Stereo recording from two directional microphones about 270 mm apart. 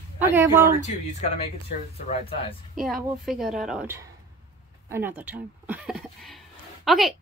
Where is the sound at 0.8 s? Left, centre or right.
Left.